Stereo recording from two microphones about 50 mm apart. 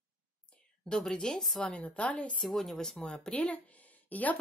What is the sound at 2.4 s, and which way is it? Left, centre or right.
Speech, centre.